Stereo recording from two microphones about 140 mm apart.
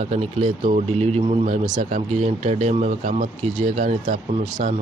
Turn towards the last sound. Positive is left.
turn(degrees=-60)  # may be behind; listen again after turning